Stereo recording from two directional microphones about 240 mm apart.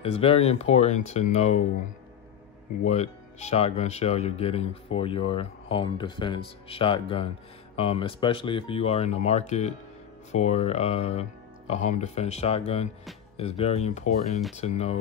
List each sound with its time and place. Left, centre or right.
0.0 s speech: left
2.8 s speech: left